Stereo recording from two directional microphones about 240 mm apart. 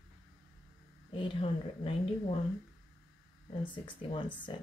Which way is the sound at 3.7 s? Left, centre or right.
Centre.